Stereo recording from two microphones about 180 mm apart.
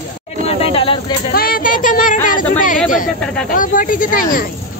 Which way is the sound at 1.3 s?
55° left (ahead or behind).